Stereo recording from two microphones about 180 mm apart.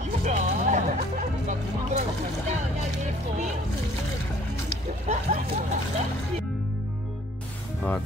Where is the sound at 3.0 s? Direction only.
40° right (ahead or behind).